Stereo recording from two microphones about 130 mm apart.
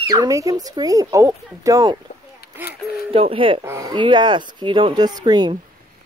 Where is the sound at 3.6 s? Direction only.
25° right (ahead or behind).